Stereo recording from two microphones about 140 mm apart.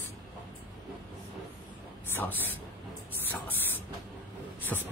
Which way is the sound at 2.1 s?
15° left (ahead or behind).